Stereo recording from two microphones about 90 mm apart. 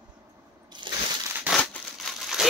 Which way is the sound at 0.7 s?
55° right (ahead or behind).